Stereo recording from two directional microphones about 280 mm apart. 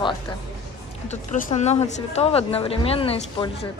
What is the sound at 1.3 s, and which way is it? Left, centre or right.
A woman's voice, left.